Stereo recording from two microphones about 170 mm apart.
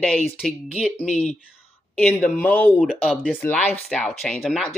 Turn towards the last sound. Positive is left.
turn(degrees=0)  # may be behind; listen again after turning